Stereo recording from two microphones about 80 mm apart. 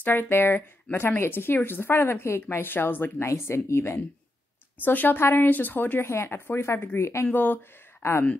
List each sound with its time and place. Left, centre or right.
0.0 s speech: left